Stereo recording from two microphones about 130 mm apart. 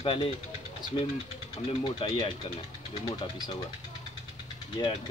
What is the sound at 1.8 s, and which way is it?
Speech, 45° left (ahead or behind).